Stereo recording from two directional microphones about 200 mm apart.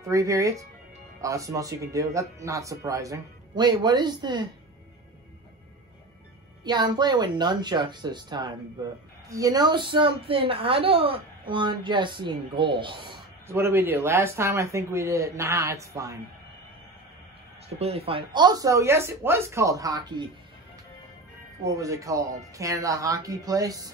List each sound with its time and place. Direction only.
0.1 s speech: 15° right (ahead or behind)
6.6 s a woman's voice: 20° right (ahead or behind)
13.5 s speech: 15° right (ahead or behind)
17.7 s speech: 30° right (ahead or behind)
21.6 s speech: 15° right (ahead or behind)